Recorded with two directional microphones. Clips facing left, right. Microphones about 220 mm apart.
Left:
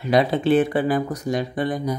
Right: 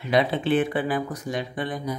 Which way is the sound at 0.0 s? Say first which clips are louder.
Left 4 dB; 40° left (ahead or behind).